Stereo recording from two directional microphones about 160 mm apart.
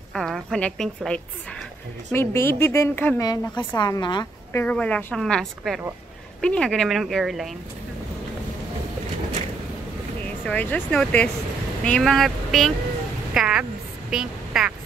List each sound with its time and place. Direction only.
0.1 s a woman's voice: centre (ahead or behind)
3.3 s a woman's voice: 25° left (ahead or behind)
4.5 s a woman's voice: 10° left (ahead or behind)
10.4 s speech: 10° left (ahead or behind)
13.3 s music: 5° right (ahead or behind)
14.1 s a woman's voice: 5° right (ahead or behind)